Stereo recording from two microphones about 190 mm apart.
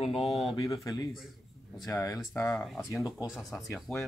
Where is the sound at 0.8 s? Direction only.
20° left (ahead or behind).